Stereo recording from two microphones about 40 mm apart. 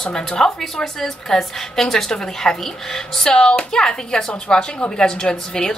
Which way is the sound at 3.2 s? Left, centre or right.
Left.